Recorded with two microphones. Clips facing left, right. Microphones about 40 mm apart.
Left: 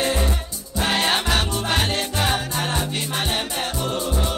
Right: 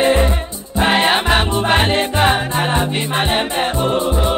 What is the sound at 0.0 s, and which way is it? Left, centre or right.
Music, right.